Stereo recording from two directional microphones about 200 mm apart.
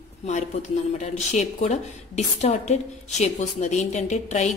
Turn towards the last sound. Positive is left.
turn(degrees=35)  # may be behind; listen again after turning